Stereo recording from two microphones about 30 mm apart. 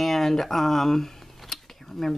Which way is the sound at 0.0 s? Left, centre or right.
Centre.